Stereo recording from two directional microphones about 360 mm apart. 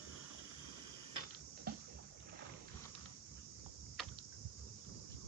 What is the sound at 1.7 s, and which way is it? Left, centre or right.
Boat, right.